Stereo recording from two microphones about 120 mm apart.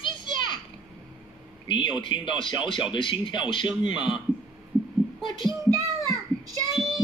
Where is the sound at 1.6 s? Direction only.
45° left (ahead or behind).